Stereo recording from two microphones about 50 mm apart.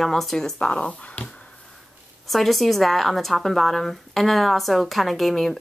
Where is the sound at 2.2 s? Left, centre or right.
Centre.